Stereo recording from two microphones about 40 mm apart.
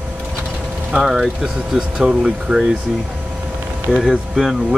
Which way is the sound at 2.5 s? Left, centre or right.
Right.